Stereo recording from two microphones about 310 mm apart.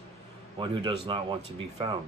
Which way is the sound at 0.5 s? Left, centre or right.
Centre.